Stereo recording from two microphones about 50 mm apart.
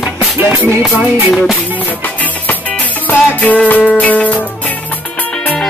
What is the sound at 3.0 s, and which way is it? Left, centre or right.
Music, left.